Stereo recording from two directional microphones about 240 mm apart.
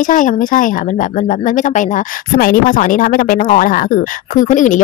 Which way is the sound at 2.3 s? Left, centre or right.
Left.